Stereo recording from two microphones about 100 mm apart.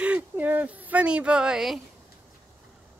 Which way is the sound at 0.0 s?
15° right (ahead or behind).